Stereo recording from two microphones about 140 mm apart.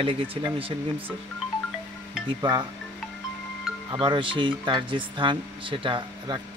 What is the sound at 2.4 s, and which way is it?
Speech, 30° right (ahead or behind).